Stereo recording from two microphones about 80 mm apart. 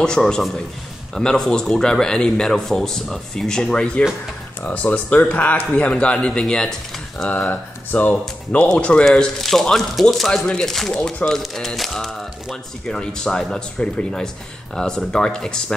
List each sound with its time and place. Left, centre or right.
0.0 s speech: centre